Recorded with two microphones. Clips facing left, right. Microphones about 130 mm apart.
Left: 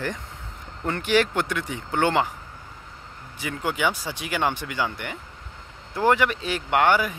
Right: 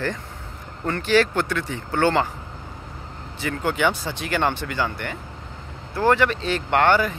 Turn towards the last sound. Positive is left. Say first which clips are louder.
# right 2 dB
turn(degrees=10)  # may be behind; listen again after turning